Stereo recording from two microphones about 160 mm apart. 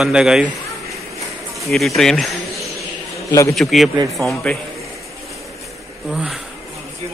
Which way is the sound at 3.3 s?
20° left (ahead or behind).